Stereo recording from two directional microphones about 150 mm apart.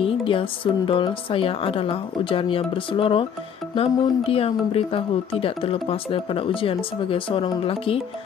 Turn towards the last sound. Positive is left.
turn(degrees=40)  # may be behind; listen again after turning